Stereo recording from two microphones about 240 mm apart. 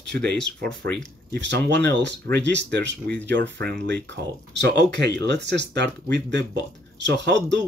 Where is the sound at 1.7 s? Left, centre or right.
Right.